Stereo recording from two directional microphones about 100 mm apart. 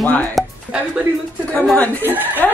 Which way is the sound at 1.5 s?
10° left (ahead or behind).